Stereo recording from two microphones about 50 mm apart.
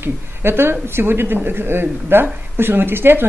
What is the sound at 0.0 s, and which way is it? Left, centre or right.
Speech, right.